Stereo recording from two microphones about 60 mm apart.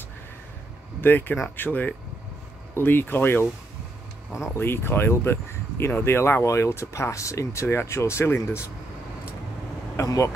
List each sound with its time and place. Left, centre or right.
1.0 s speech: left
4.6 s speech: left
6.4 s speech: left
7.6 s speech: left
10.0 s speech: left